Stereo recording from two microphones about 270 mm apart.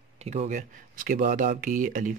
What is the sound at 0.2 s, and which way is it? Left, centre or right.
Speech, right.